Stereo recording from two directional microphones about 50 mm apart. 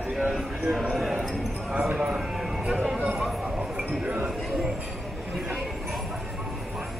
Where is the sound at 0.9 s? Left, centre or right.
Centre.